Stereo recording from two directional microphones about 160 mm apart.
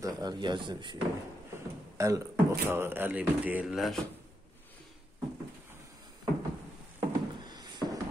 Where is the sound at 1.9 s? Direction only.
20° right (ahead or behind); by 4.0 s centre (ahead or behind).